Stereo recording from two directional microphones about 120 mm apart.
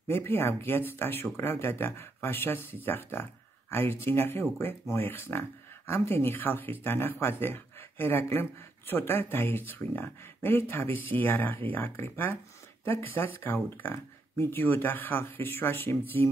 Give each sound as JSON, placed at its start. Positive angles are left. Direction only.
{"t": 0.1, "sound": "speech", "side_deg": 20}